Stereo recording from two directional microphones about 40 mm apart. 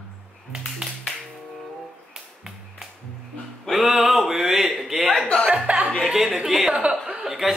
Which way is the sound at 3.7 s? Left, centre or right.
Centre.